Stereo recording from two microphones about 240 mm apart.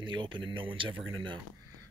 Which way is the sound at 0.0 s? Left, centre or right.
Centre.